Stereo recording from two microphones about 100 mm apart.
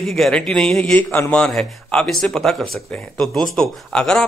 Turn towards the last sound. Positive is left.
turn(degrees=5)  # may be behind; listen again after turning